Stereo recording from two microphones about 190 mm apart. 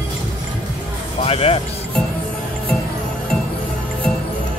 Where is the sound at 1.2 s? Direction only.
30° left (ahead or behind).